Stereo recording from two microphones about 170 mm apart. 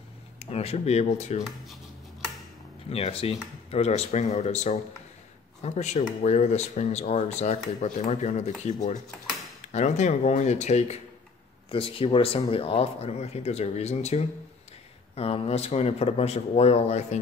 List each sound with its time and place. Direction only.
0.4 s speech: 40° left (ahead or behind)
2.9 s speech: 35° left (ahead or behind)